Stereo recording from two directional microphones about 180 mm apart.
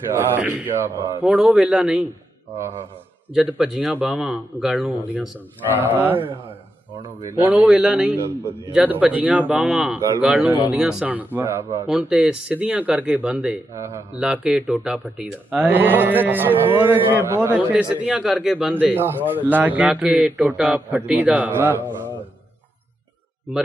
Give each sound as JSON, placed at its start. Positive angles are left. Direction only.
{"t": 0.1, "sound": "a man's voice", "side_deg": -10}
{"t": 3.3, "sound": "a man's voice", "side_deg": -5}
{"t": 7.3, "sound": "a man's voice", "side_deg": -5}
{"t": 11.9, "sound": "a man's voice", "side_deg": -5}